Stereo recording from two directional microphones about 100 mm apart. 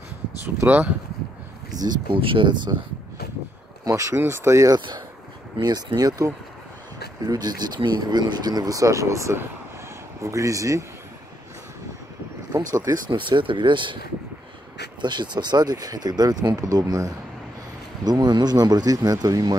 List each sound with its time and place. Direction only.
0.6 s speech: 20° right (ahead or behind)
1.8 s speech: 50° right (ahead or behind)
3.8 s speech: 35° right (ahead or behind)
4.7 s speech: 50° right (ahead or behind); by 10.9 s 35° right (ahead or behind)
12.5 s speech: 35° right (ahead or behind)
13.1 s speech: 55° right (ahead or behind)
15.0 s speech: 50° right (ahead or behind)